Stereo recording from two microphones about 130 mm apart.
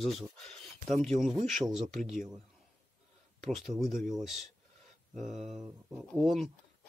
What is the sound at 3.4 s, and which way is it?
Speech, centre (ahead or behind).